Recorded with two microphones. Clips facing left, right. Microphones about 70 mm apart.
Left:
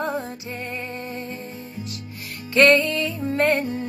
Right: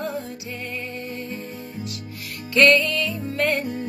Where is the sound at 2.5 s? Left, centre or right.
Left.